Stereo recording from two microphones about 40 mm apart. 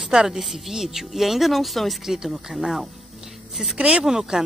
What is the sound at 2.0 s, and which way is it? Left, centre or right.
Speech, centre.